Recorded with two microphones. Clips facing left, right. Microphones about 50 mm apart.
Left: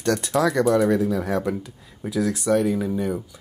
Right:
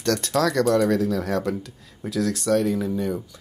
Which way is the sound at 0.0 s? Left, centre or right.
Centre.